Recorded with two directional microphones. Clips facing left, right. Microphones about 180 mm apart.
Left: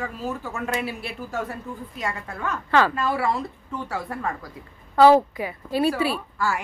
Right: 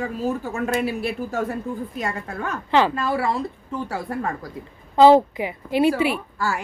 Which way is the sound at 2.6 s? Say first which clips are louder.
Right 1 dB; 20° right (ahead or behind).